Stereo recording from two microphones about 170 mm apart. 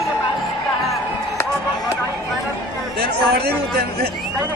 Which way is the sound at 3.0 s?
65° right (ahead or behind).